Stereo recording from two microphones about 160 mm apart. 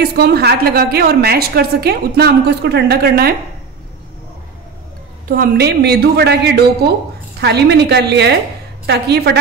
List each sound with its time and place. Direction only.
0.0 s a woman's voice: 80° right
5.3 s a woman's voice: 70° right (ahead or behind); by 9.4 s 90° right